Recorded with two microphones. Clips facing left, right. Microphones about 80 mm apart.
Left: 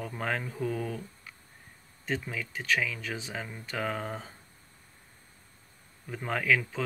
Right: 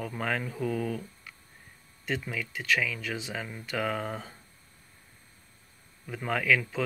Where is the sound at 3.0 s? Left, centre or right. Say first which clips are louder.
Right 2 dB; left.